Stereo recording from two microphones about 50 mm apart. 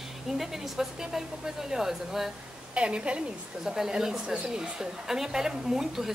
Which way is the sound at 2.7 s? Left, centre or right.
Centre.